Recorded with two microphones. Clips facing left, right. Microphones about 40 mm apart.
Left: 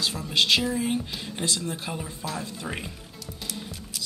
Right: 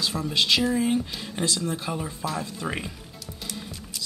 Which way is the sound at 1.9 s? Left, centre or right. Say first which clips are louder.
Right 3 dB; centre.